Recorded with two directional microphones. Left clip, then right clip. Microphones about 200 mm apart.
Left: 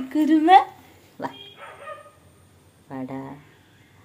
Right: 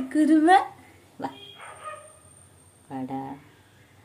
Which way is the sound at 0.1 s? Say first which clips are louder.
Left 3 dB; 10° right (ahead or behind).